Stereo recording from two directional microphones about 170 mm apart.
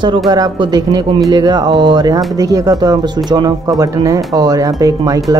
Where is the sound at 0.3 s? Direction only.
25° right (ahead or behind).